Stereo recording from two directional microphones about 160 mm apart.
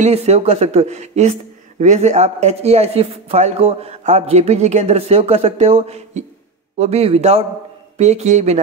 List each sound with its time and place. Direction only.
0.0 s a man's voice: 40° right (ahead or behind)